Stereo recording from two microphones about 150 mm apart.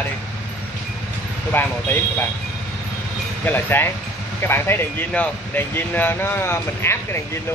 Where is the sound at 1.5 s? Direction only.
15° left (ahead or behind).